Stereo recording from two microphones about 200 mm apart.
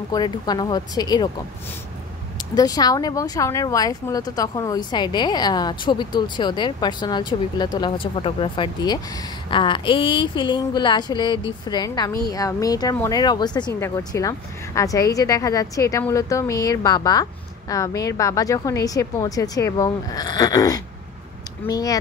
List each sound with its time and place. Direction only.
0.1 s speech: 20° left (ahead or behind)
2.3 s speech: 20° left (ahead or behind)